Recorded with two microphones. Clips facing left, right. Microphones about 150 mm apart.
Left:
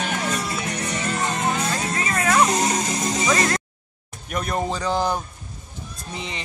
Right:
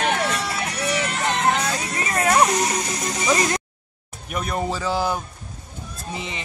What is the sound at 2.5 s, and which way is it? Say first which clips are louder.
Music: left 1 dB; 25° left (ahead or behind).